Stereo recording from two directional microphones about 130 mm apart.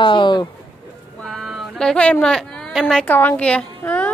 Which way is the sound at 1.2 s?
Centre (ahead or behind).